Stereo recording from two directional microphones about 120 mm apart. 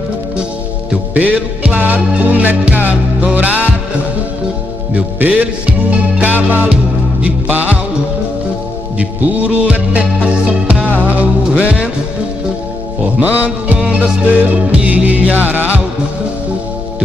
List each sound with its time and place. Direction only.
1.1 s music: 15° right (ahead or behind)
4.9 s music: 15° right (ahead or behind)
8.9 s music: 10° right (ahead or behind)
13.2 s music: 15° right (ahead or behind)